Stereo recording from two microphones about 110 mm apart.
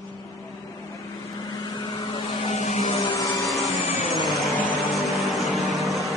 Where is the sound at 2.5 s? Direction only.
85° left.